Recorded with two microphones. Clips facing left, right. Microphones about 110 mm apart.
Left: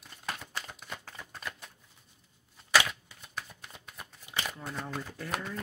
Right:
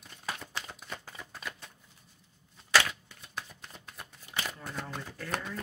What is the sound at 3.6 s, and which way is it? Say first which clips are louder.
Shuffling cards: even; 5° left (ahead or behind).